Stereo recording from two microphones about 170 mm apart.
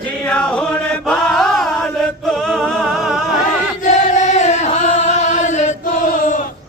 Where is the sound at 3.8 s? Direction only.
45° left (ahead or behind).